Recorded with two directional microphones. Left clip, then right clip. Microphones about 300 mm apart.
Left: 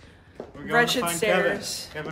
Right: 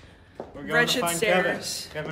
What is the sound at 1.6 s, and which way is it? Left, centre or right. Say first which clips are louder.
Speech: even; centre.